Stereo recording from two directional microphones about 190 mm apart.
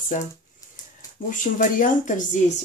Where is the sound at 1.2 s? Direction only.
45° left (ahead or behind).